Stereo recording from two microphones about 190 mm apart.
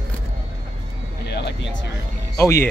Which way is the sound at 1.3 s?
60° left (ahead or behind).